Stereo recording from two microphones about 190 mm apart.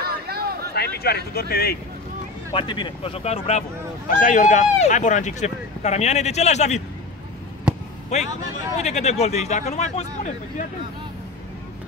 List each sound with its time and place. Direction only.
0.0 s a sound: 55° right (ahead or behind)
0.7 s speech: 55° left (ahead or behind)
2.5 s speech: 25° left (ahead or behind)
8.1 s speech: 35° left (ahead or behind)